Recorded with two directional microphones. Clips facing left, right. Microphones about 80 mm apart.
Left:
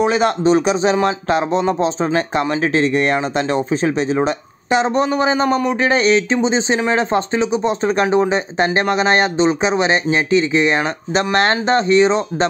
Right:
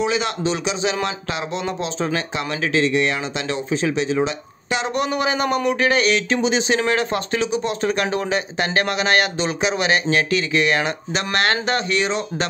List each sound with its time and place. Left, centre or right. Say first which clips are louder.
0.0 s speech: left 6 dB; left